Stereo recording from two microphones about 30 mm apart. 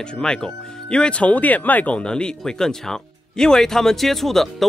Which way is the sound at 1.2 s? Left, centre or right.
Left.